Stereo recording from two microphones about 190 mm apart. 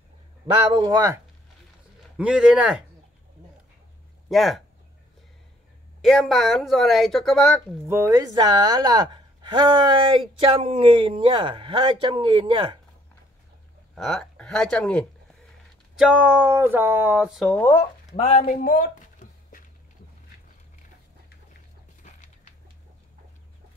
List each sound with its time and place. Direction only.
0.5 s a woman's voice: 25° right (ahead or behind)
2.1 s speech: 5° right (ahead or behind)
4.3 s speech: centre (ahead or behind)
6.0 s speech: centre (ahead or behind)
7.9 s a woman's voice: 15° right (ahead or behind)
13.9 s speech: centre (ahead or behind)
16.0 s speech: 5° right (ahead or behind)
17.6 s speech: 15° left (ahead or behind)
18.2 s speech: 35° left (ahead or behind)